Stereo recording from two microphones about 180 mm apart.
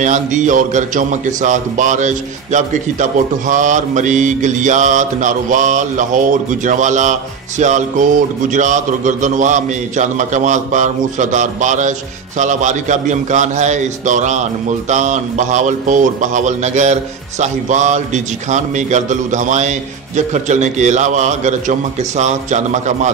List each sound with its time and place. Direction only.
0.0 s a man's voice: 45° right (ahead or behind)